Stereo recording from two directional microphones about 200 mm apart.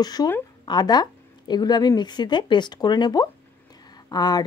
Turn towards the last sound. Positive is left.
turn(degrees=20)  # may be behind; listen again after turning